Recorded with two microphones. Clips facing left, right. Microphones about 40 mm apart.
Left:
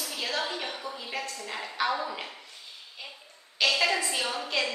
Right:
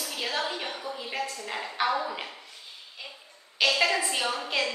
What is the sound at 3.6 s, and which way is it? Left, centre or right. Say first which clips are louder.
A woman's voice: right 1 dB; centre.